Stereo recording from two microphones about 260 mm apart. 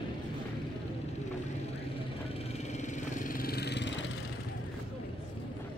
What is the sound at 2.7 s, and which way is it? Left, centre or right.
Vehicle, left.